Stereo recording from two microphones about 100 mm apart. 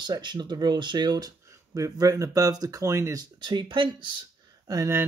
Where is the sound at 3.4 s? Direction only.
50° right (ahead or behind).